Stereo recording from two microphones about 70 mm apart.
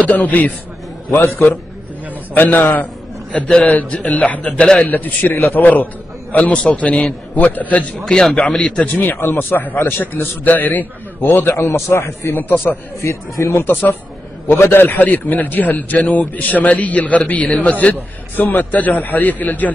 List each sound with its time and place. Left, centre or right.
0.0 s a man's voice: left
2.3 s a man's voice: left
3.3 s a man's voice: centre
4.8 s a man's voice: left
8.0 s a man's voice: centre
8.8 s a man's voice: left
12.4 s a man's voice: left
13.7 s a man's voice: left